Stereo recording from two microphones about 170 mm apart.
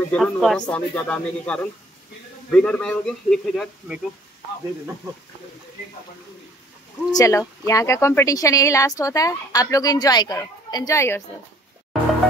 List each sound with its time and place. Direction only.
0.1 s speech: centre (ahead or behind)
7.1 s speech: 20° left (ahead or behind)